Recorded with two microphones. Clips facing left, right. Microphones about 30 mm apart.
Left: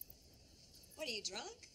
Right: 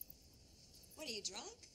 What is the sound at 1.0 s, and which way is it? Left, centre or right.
Speech, left.